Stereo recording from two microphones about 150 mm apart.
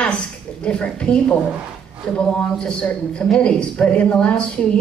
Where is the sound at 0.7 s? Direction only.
5° left (ahead or behind).